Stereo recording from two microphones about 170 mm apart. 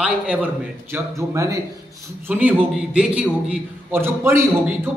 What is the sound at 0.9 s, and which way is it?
A man's voice, 20° right (ahead or behind).